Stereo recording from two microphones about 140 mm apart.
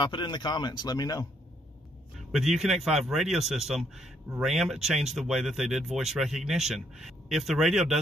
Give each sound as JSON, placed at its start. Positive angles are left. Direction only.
{"t": 0.0, "sound": "speech", "side_deg": 35}
{"t": 2.1, "sound": "speech", "side_deg": 0}